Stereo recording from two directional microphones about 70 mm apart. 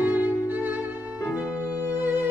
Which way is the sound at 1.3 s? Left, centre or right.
Centre.